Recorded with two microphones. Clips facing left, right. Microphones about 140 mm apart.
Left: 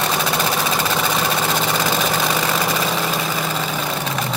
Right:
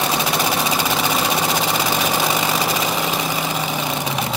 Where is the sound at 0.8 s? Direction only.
15° right (ahead or behind).